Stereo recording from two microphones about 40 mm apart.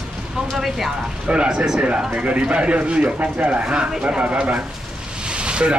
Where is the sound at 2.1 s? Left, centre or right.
Right.